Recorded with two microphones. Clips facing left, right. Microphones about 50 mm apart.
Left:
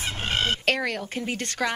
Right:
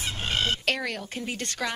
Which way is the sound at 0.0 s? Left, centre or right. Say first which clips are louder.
Left 2 dB; left.